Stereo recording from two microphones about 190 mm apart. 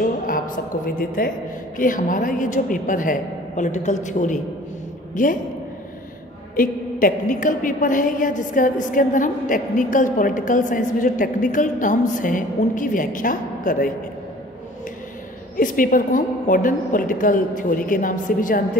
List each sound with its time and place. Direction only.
0.8 s a woman's voice: 50° left (ahead or behind)
6.5 s a woman's voice: 50° left (ahead or behind)
15.5 s a woman's voice: 45° left (ahead or behind)